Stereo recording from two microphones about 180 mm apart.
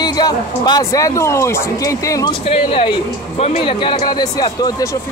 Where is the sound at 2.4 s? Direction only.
30° left (ahead or behind).